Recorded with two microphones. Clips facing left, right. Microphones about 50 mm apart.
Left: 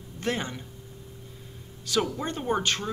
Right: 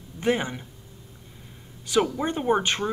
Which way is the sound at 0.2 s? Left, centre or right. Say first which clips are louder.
Right 5 dB; centre.